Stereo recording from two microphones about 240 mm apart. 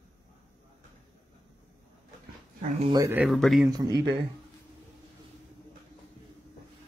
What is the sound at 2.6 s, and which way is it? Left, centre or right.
Speech, right.